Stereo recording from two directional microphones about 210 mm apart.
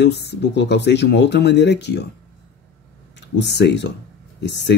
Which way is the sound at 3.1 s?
55° left (ahead or behind).